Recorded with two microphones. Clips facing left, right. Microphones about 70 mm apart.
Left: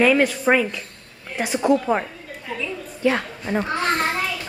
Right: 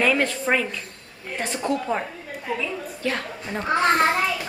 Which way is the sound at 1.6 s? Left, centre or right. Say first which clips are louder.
Left 6 dB; left.